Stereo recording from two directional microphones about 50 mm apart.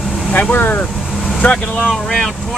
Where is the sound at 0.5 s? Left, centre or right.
Left.